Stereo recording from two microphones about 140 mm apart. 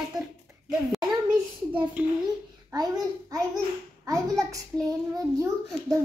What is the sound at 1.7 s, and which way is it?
Speech, 10° right (ahead or behind).